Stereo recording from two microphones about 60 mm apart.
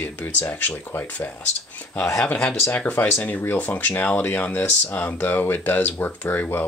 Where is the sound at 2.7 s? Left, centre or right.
Left.